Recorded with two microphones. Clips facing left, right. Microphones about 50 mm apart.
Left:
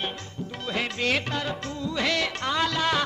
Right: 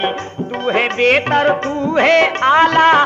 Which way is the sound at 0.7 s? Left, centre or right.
Right.